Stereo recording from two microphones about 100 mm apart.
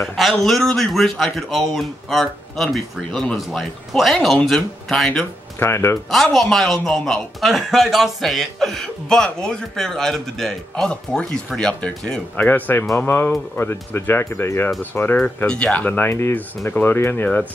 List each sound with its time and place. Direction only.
0.0 s a man's voice: 5° left (ahead or behind)
5.6 s speech: 25° left (ahead or behind)
6.3 s a man's voice: centre (ahead or behind)